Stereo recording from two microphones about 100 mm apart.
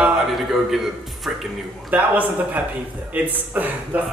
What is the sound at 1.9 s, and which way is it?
A man's voice, 15° right (ahead or behind).